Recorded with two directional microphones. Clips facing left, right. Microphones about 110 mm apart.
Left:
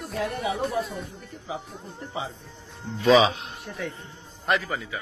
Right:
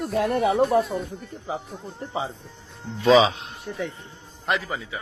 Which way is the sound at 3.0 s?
25° right (ahead or behind).